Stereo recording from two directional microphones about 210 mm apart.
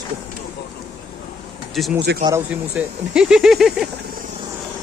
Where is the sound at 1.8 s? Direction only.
Centre (ahead or behind).